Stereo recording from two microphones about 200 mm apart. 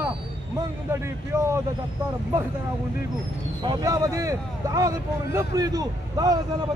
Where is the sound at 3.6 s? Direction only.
15° right (ahead or behind).